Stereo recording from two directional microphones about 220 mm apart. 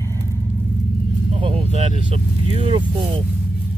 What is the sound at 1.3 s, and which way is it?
Speech, 25° right (ahead or behind).